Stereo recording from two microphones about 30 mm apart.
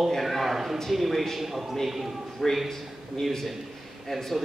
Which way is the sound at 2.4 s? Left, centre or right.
Centre.